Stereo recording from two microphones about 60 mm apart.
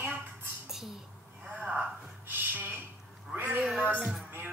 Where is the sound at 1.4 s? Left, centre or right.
Centre.